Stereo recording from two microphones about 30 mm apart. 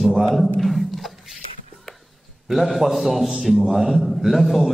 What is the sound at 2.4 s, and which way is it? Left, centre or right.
A man's voice, centre.